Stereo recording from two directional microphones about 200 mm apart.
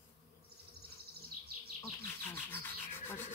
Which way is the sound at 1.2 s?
50° right (ahead or behind).